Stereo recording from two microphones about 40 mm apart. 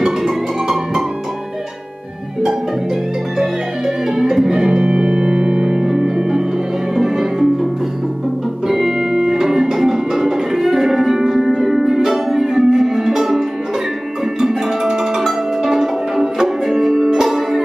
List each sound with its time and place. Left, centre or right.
3.3 s music: centre
8.6 s music: centre
14.4 s music: centre